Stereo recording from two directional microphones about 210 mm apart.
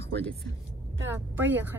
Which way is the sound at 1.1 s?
10° right (ahead or behind).